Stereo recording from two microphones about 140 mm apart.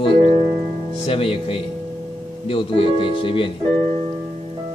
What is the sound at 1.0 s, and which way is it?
Speech, 40° left (ahead or behind).